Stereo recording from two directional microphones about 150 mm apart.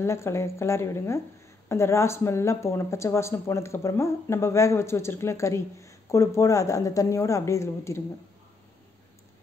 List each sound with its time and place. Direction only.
0.0 s speech: 20° left (ahead or behind)